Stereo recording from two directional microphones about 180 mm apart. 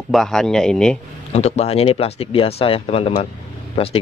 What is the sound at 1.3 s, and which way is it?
Speech, 35° left (ahead or behind).